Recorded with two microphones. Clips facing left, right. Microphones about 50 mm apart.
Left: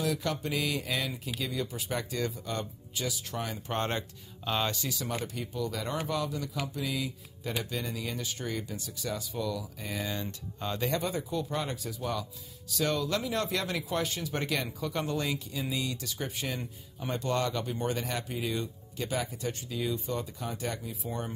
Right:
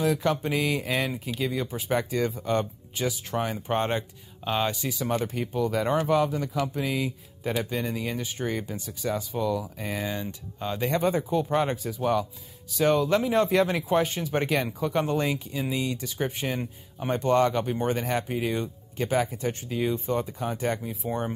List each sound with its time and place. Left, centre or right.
0.0 s speech: right
4.9 s speech: right
10.0 s speech: centre
10.9 s speech: right